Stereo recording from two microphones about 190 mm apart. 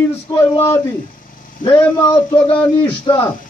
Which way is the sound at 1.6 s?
10° left (ahead or behind).